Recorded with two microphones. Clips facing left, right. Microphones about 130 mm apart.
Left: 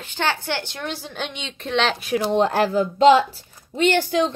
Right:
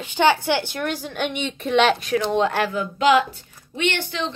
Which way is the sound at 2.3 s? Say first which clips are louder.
Left 6 dB; 35° left (ahead or behind).